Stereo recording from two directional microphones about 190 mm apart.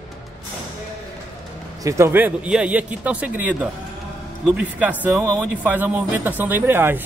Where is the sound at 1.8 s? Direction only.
15° right (ahead or behind).